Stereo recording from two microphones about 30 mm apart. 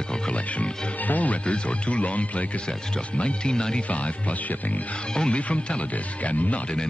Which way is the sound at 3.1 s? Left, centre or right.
Left.